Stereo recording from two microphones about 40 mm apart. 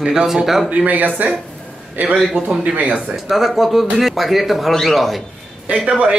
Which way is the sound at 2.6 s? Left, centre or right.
Right.